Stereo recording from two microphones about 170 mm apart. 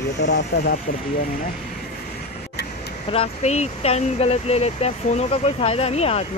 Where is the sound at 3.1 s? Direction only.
40° left (ahead or behind).